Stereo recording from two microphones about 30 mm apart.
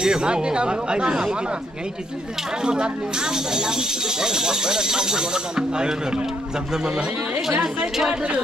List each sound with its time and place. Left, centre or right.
0.0 s speech: right
2.6 s speech: right